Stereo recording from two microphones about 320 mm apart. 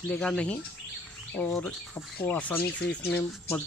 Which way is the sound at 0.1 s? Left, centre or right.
Centre.